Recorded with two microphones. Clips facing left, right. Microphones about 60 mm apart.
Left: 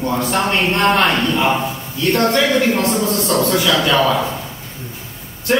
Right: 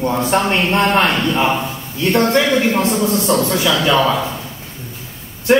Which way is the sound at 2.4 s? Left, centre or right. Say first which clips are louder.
Even; centre.